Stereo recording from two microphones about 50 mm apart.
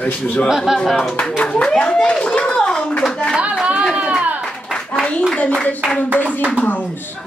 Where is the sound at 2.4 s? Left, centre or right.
Centre.